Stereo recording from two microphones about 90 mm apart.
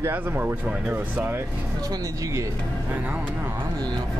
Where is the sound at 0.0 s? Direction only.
25° right (ahead or behind).